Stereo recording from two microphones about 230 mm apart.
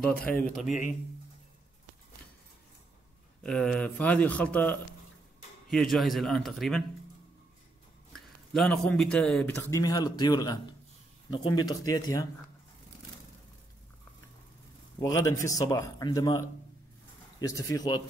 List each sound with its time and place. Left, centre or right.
0.3 s speech: centre
0.7 s speech: left
3.4 s speech: centre
8.5 s speech: centre
9.6 s speech: centre
15.0 s speech: centre